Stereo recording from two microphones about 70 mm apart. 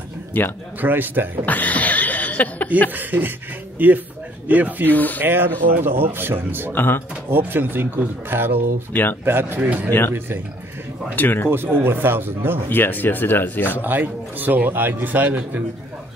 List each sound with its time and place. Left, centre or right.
0.3 s speech: left
0.7 s a man's voice: right
1.4 s chuckle: left
2.9 s a man's voice: right
4.9 s speech: left
5.2 s speech: right
6.7 s speech: left
7.2 s speech: right
9.8 s speech: left
11.1 s speech: left
11.5 s speech: right
12.6 s speech: left
13.7 s a man's voice: right